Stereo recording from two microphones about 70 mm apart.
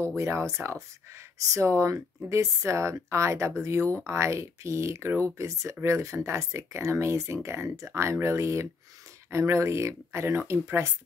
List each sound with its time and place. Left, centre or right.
0.1 s speech: right